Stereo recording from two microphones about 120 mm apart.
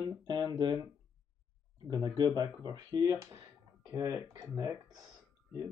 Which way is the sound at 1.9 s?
35° right (ahead or behind).